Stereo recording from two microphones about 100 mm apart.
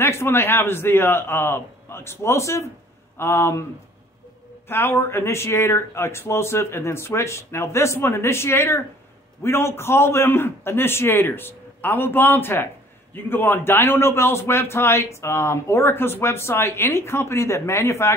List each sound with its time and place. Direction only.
0.0 s a man's voice: 25° left (ahead or behind)
4.6 s a man's voice: 25° left (ahead or behind)